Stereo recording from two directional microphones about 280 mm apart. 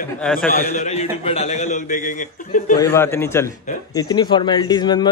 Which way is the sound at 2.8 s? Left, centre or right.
Centre.